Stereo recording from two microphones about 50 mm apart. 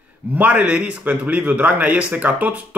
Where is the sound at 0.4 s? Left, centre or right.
Right.